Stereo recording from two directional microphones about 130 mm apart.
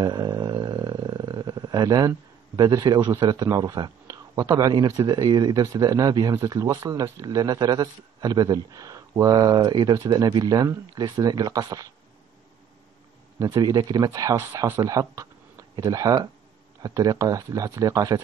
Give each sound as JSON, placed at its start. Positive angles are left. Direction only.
{"t": 0.0, "sound": "speech", "side_deg": -30}
{"t": 13.4, "sound": "speech", "side_deg": -30}